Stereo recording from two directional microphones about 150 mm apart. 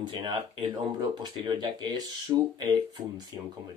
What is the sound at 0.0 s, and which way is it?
Speech, 30° right (ahead or behind).